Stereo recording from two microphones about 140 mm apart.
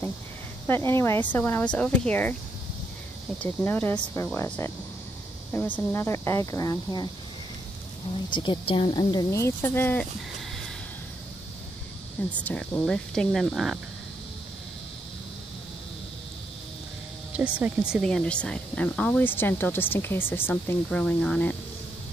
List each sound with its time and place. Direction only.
0.7 s speech: 15° left (ahead or behind)
3.3 s speech: 15° left (ahead or behind)
8.3 s speech: 35° left (ahead or behind); by 10.0 s 15° left (ahead or behind)
12.4 s speech: 10° left (ahead or behind)
17.4 s speech: 10° right (ahead or behind)
18.0 s speech: 5° left (ahead or behind)